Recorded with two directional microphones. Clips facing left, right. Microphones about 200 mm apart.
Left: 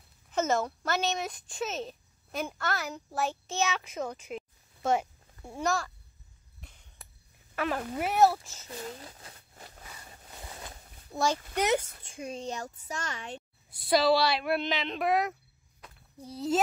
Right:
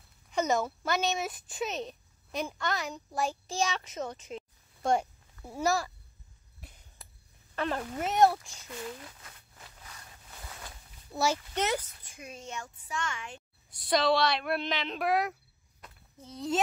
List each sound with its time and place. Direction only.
0.3 s speech: centre (ahead or behind)
7.5 s a woman's voice: 5° left (ahead or behind)
8.6 s speech: 35° left (ahead or behind)
11.1 s speech: 15° left (ahead or behind)
11.7 s speech: 30° left (ahead or behind)
13.8 s a woman's voice: 5° left (ahead or behind)